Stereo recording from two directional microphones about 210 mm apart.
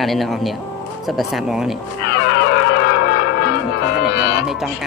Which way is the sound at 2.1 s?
50° left (ahead or behind).